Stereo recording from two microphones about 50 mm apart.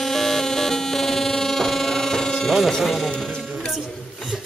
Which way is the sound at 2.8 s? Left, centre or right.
Centre.